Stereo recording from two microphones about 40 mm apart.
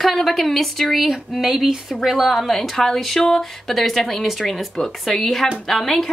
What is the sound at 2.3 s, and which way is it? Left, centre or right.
Speech, centre.